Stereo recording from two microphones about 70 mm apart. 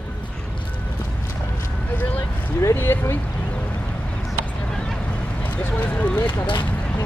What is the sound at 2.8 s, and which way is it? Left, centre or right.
Speech, left.